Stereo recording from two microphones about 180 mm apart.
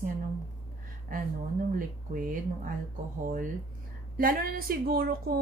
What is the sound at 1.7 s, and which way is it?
A woman's voice, 50° right (ahead or behind).